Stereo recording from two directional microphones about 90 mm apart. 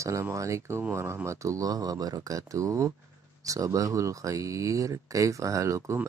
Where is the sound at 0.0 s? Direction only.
35° right (ahead or behind).